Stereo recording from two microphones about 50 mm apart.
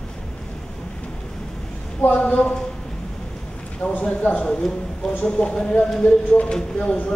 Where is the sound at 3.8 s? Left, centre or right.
Left.